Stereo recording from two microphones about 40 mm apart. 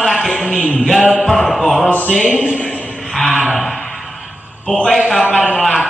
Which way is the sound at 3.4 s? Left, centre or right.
Centre.